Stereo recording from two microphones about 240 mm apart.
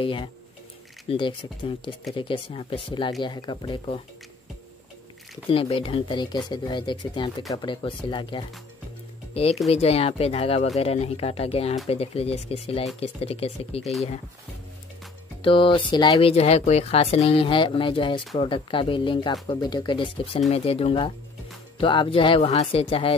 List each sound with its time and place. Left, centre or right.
0.0 s speech: left
5.5 s speech: left
15.4 s speech: left